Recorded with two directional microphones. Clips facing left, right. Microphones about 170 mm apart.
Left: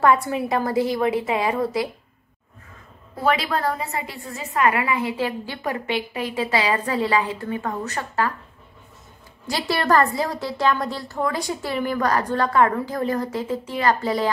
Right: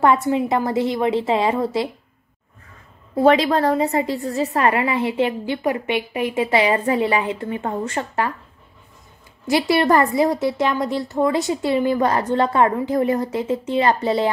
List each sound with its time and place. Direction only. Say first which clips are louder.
0.0 s a woman's voice: right 2 dB; 25° right (ahead or behind)
3.3 s a woman's voice: right 6 dB; 35° right (ahead or behind)
9.5 s a woman's voice: right 5 dB; 20° right (ahead or behind)